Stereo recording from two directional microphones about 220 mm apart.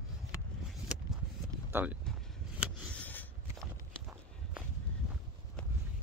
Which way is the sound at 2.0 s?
Centre (ahead or behind).